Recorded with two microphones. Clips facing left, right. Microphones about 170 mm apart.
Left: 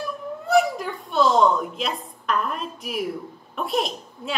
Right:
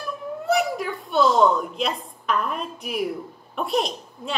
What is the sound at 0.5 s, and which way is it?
A woman's voice, centre (ahead or behind).